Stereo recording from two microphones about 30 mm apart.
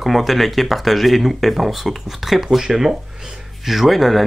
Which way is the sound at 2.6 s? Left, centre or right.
Centre.